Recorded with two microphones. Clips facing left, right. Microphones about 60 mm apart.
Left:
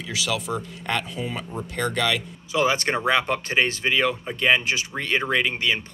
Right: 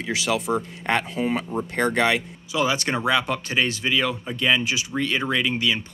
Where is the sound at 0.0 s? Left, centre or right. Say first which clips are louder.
Right 3 dB; right.